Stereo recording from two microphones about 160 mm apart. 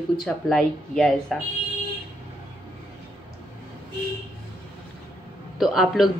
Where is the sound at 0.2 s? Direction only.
5° left (ahead or behind).